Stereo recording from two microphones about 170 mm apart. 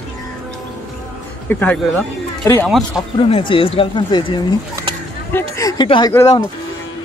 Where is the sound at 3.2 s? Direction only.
30° left (ahead or behind).